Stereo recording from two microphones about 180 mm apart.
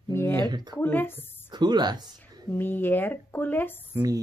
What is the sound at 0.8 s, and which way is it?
Speech, 10° left (ahead or behind).